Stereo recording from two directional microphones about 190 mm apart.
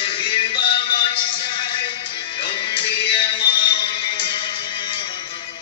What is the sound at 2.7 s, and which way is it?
Music, 30° left (ahead or behind).